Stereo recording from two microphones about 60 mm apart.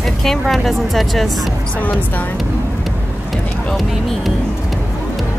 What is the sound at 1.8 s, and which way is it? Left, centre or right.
Speech, left.